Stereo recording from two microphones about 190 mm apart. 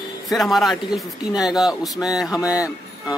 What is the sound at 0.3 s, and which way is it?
Speech, centre (ahead or behind).